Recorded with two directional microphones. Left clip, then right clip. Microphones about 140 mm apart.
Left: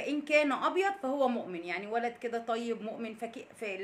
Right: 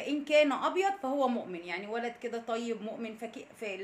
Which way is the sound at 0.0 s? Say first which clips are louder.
Right 2 dB; 20° left (ahead or behind).